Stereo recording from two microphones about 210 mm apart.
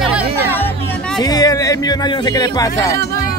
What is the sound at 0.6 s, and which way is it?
Music, 5° left (ahead or behind).